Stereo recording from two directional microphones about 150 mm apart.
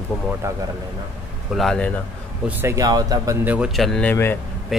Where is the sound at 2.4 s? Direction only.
15° right (ahead or behind).